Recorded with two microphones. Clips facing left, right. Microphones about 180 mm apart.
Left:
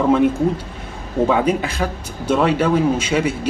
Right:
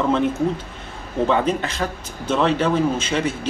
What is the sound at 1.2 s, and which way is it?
Speech, 10° left (ahead or behind).